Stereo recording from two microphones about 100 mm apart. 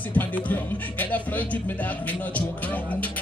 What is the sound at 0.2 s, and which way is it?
Speech, 15° left (ahead or behind).